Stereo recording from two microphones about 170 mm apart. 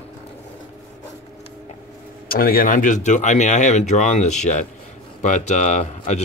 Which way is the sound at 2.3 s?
60° left (ahead or behind).